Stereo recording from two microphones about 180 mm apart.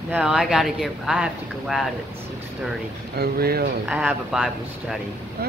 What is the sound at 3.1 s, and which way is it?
Speech, 60° right (ahead or behind).